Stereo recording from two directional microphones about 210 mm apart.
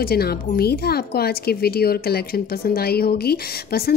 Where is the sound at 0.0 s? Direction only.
45° left (ahead or behind).